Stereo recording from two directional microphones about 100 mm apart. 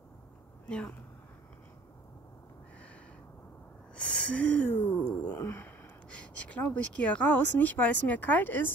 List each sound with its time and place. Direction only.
0.7 s speech: 10° left (ahead or behind)
3.9 s a sound: 15° left (ahead or behind)
6.6 s speech: 15° left (ahead or behind)